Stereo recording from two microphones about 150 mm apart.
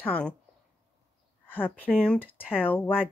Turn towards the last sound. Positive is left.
turn(degrees=10)  # may be behind; listen again after turning